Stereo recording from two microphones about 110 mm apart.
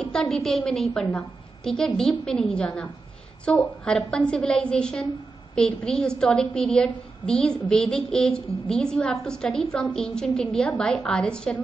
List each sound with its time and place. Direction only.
0.0 s a woman's voice: 5° left (ahead or behind)